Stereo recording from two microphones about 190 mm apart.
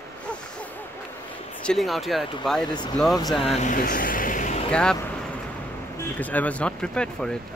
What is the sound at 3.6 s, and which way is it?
Vehicle, 45° left (ahead or behind).